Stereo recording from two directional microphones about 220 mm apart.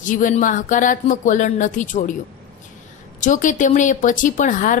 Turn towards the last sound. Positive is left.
turn(degrees=35)  # may be behind; listen again after turning